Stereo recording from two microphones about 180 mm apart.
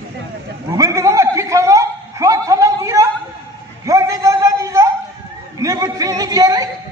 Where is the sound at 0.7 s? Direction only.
20° right (ahead or behind).